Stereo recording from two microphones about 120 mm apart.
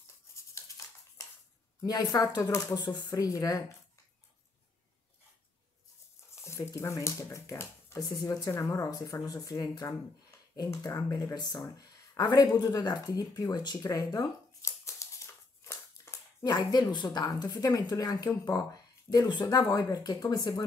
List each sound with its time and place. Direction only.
0.4 s a sound: 25° left (ahead or behind)
1.8 s a woman's voice: 30° left (ahead or behind)
6.3 s a woman's voice: 25° left (ahead or behind)
16.4 s a woman's voice: 35° left (ahead or behind)